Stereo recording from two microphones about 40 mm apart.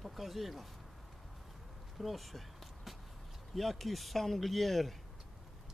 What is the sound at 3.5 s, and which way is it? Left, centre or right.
Speech, centre.